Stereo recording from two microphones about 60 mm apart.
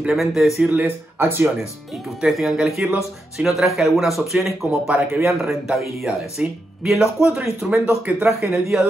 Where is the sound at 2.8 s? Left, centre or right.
Centre.